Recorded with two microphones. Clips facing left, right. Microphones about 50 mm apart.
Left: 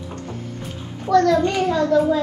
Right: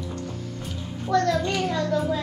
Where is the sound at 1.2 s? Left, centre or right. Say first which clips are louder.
Left 7 dB; left.